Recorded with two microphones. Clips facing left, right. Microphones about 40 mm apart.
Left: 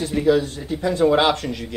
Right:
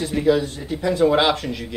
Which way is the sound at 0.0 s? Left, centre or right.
Centre.